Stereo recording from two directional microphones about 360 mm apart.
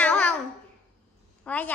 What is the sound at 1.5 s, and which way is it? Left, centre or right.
Speech, centre.